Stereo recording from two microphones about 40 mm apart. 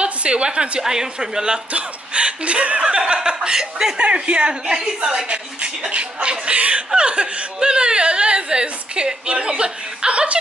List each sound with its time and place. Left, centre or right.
0.0 s a woman's voice: right
1.7 s speech: right